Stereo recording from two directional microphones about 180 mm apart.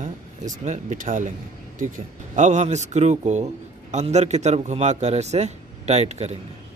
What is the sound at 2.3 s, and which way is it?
A man's voice, 40° right (ahead or behind).